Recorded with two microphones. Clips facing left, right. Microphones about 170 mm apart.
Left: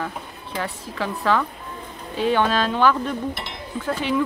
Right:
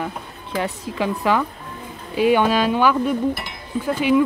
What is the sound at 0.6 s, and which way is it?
Chink, 15° right (ahead or behind).